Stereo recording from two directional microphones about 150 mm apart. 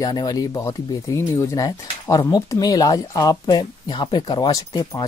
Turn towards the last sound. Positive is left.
turn(degrees=25)  # may be behind; listen again after turning